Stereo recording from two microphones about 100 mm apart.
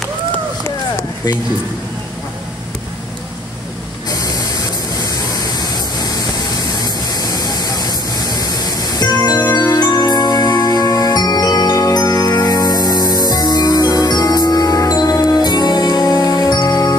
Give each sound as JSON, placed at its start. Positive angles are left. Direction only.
{"t": 4.1, "sound": "spray", "side_deg": 35}
{"t": 9.7, "sound": "music", "side_deg": 30}